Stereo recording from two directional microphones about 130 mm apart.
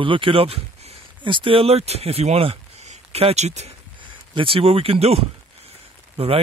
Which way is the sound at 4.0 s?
40° right (ahead or behind).